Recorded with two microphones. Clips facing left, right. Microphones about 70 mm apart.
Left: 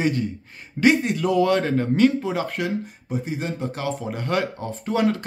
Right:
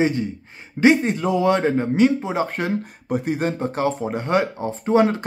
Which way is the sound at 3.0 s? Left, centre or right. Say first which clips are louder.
Right 7 dB; right.